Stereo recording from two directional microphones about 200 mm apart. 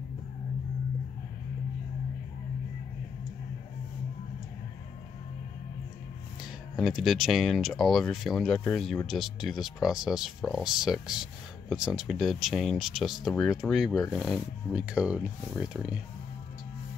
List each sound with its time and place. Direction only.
6.8 s speech: centre (ahead or behind)